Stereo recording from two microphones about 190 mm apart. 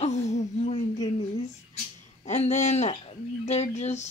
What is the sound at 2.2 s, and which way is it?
Speech, 35° left (ahead or behind).